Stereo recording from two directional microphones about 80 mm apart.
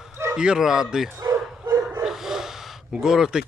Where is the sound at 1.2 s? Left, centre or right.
Right.